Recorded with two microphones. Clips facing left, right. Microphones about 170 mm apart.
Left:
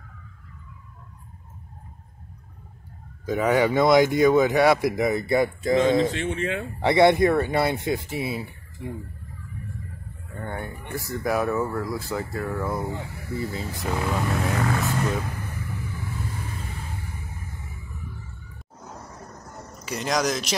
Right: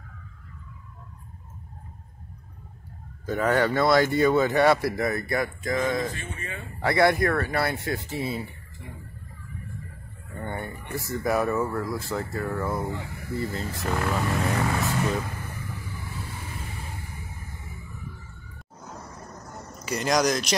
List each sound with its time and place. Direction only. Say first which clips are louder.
3.3 s speech: left 2 dB; 10° left (ahead or behind)
6.1 s speech: left 11 dB; 90° left
6.8 s speech: left 4 dB; 25° left (ahead or behind); by 8.5 s 5° left (ahead or behind)
10.4 s speech: even; centre (ahead or behind)
19.8 s speech: right 2 dB; centre (ahead or behind)